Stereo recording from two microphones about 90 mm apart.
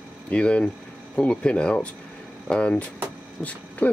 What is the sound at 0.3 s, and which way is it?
Speech, 15° left (ahead or behind).